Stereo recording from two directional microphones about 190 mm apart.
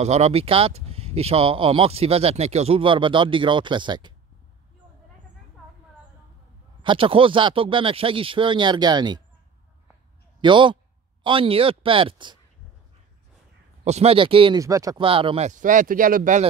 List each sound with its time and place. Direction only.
0.0 s speech: 35° right (ahead or behind)
6.8 s speech: 25° right (ahead or behind)
10.4 s speech: 25° right (ahead or behind)
13.8 s speech: 35° right (ahead or behind)